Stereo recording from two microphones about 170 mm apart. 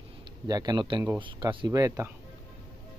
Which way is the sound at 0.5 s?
25° right (ahead or behind).